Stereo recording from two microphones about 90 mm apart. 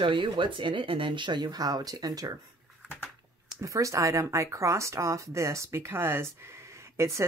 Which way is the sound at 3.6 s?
35° right (ahead or behind).